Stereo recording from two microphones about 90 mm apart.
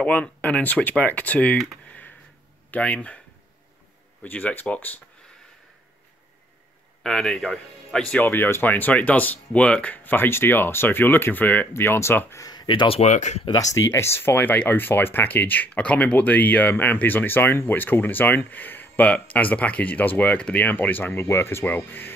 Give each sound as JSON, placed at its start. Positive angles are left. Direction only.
{"t": 0.0, "sound": "speech", "side_deg": 15}
{"t": 1.9, "sound": "a sound", "side_deg": 20}
{"t": 2.7, "sound": "speech", "side_deg": 15}
{"t": 4.2, "sound": "speech", "side_deg": 15}
{"t": 7.0, "sound": "speech", "side_deg": 5}
{"t": 12.4, "sound": "speech", "side_deg": 55}
{"t": 13.9, "sound": "speech", "side_deg": 30}